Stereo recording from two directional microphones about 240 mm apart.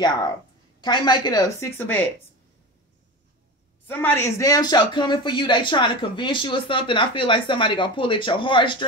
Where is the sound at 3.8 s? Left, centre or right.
Centre.